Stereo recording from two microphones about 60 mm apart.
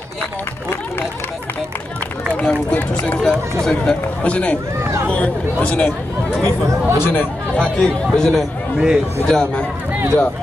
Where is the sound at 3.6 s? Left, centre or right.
Centre.